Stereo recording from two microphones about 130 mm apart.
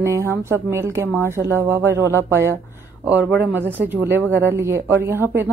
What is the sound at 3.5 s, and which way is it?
Speech, 15° right (ahead or behind).